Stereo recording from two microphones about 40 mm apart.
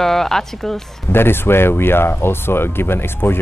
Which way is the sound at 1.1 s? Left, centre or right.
Left.